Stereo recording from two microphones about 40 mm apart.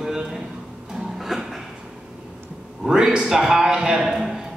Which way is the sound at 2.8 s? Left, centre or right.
Centre.